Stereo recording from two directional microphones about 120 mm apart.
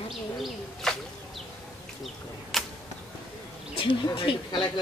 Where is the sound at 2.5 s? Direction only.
Centre (ahead or behind).